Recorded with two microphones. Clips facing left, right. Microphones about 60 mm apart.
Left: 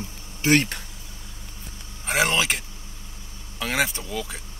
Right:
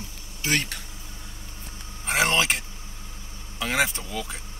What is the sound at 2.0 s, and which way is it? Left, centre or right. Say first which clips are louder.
Vehicle: even; centre.